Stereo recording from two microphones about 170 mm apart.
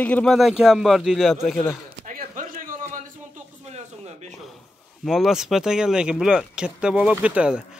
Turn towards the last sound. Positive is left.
turn(degrees=-5)  # may be behind; listen again after turning